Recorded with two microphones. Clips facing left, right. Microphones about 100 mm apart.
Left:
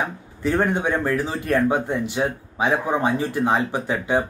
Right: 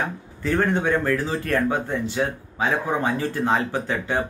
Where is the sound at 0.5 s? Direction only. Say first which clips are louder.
Even; 15° left (ahead or behind).